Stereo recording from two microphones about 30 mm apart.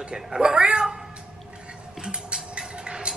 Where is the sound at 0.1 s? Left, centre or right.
Right.